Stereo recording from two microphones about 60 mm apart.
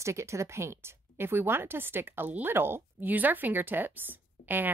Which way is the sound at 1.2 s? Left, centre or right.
Right.